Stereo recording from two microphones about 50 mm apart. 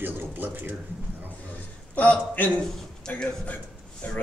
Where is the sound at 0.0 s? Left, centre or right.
Right.